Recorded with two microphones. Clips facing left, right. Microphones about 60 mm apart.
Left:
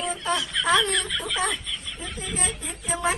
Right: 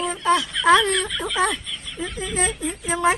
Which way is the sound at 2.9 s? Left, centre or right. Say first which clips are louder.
Right 5 dB; right.